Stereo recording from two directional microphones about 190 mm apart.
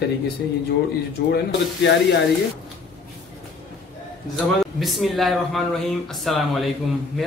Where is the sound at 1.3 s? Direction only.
60° left (ahead or behind).